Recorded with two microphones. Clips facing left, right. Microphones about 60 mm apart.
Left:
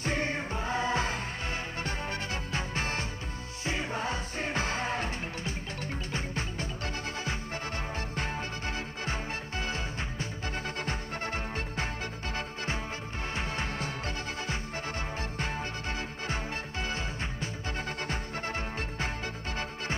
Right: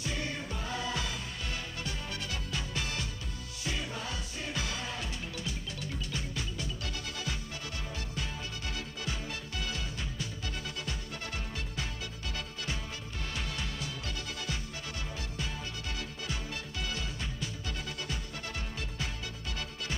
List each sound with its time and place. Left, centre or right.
0.0 s music: left
8.2 s music: left
13.3 s music: left
16.8 s music: left